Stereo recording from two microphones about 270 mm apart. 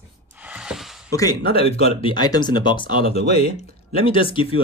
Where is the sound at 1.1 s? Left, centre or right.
Centre.